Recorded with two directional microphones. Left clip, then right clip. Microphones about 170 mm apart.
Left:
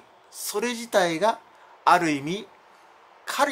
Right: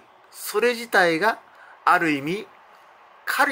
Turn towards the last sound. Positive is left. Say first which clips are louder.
# right 3 dB
turn(degrees=5)  # may be behind; listen again after turning